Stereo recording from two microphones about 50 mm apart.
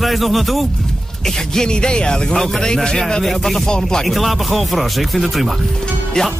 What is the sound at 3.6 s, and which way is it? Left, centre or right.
Speech, centre.